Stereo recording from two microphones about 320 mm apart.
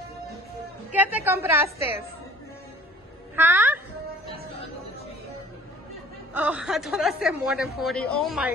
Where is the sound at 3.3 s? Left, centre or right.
Centre.